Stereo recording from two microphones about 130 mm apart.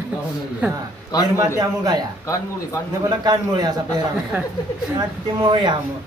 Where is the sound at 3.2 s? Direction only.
30° right (ahead or behind).